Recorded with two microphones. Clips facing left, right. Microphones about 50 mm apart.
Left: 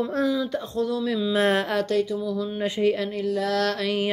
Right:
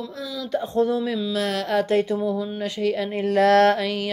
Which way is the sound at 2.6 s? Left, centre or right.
Centre.